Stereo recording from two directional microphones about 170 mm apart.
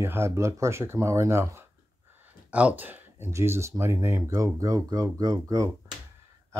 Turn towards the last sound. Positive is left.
turn(degrees=-20)  # may be behind; listen again after turning